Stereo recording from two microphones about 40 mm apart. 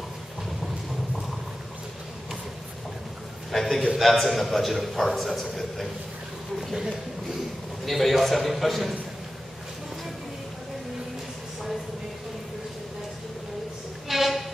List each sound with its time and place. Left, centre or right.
3.5 s a man's voice: centre
7.8 s a man's voice: centre
14.0 s train: centre